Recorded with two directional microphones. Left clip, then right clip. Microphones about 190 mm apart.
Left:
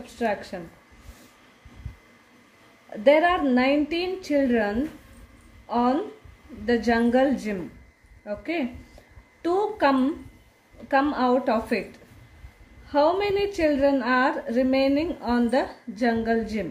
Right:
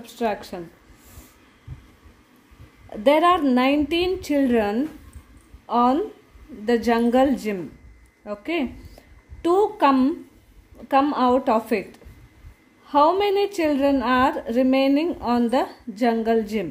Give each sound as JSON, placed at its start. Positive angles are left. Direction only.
{"t": 0.0, "sound": "a woman's voice", "side_deg": -30}
{"t": 2.9, "sound": "a woman's voice", "side_deg": -35}
{"t": 12.8, "sound": "a woman's voice", "side_deg": -30}